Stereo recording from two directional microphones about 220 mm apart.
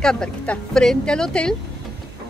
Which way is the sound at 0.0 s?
5° left (ahead or behind).